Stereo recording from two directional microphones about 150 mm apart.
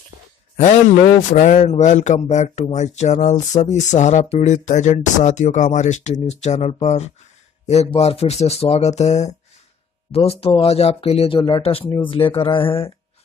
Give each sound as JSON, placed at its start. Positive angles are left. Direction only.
{"t": 0.6, "sound": "a man's voice", "side_deg": 55}